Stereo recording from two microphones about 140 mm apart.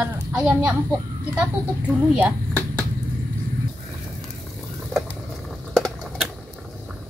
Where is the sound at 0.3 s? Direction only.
10° right (ahead or behind).